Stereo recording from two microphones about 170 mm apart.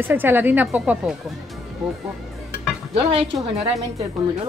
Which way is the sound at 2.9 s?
40° right (ahead or behind).